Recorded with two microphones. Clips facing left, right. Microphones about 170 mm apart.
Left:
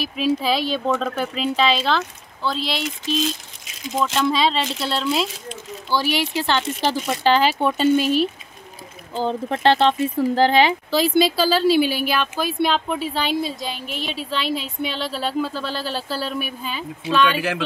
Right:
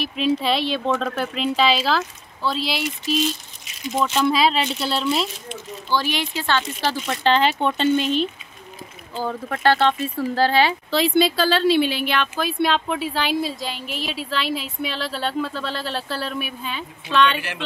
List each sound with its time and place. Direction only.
0.0 s speech: centre (ahead or behind)
5.9 s speech: 10° left (ahead or behind)
9.1 s speech: 25° left (ahead or behind)
10.9 s speech: centre (ahead or behind)